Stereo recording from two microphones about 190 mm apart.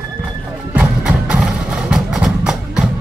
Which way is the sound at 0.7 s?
5° right (ahead or behind).